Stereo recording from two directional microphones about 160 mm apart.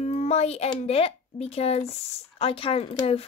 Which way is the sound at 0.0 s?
45° left (ahead or behind).